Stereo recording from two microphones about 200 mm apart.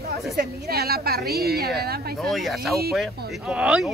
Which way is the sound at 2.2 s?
Centre (ahead or behind).